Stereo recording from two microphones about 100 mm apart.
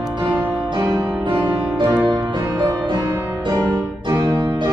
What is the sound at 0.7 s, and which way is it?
Music, 40° right (ahead or behind).